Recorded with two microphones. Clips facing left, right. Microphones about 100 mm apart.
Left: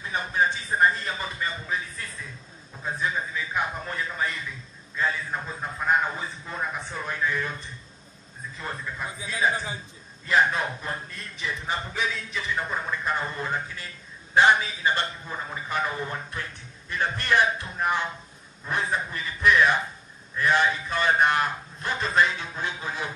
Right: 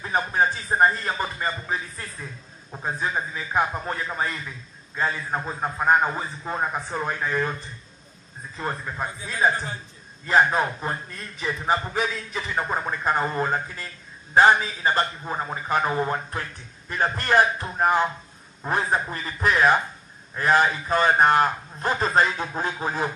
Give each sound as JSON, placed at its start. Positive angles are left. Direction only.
{"t": 0.0, "sound": "a man's voice", "side_deg": -40}
{"t": 8.5, "sound": "a man's voice", "side_deg": -45}